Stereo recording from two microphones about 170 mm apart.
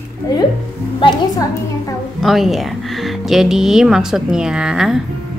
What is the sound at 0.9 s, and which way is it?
Speech, 30° left (ahead or behind).